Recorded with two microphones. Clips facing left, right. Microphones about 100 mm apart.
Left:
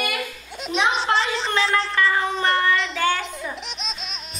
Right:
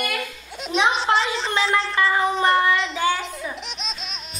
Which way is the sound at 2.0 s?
20° right (ahead or behind).